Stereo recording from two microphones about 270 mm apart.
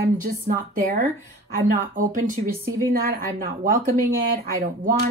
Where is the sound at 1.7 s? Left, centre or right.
Right.